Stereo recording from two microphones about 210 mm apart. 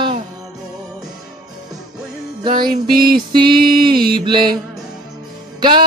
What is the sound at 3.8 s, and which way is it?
Mantra, 20° right (ahead or behind).